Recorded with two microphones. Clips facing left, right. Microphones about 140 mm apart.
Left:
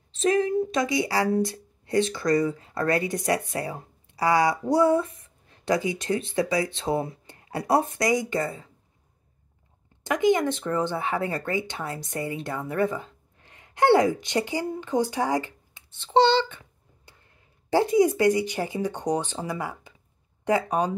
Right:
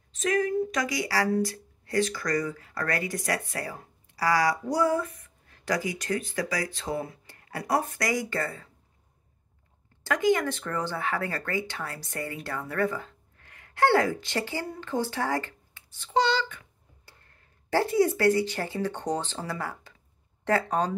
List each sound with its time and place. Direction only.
0.1 s speech: 30° left (ahead or behind)
10.0 s speech: 20° left (ahead or behind)